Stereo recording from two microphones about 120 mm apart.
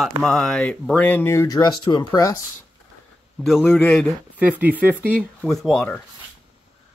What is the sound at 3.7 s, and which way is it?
Speech, 5° left (ahead or behind).